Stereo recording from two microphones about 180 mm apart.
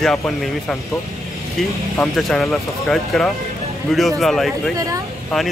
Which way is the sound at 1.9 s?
Centre (ahead or behind).